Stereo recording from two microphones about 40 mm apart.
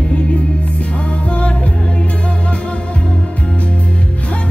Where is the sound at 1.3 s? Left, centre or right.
Left.